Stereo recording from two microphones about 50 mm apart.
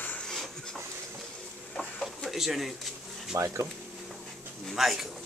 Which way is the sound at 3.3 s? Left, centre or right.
Right.